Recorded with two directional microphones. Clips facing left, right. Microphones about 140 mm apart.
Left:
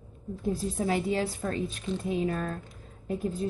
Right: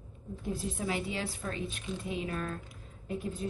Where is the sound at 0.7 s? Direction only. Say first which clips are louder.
Left 7 dB; 40° left (ahead or behind).